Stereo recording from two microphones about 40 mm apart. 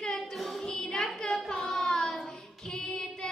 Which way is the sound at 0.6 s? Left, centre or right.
Centre.